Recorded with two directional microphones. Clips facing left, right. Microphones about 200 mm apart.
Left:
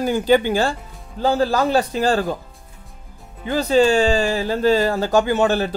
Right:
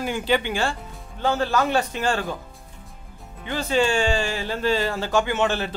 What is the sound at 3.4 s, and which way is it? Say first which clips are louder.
Speech: left 6 dB; 40° left (ahead or behind).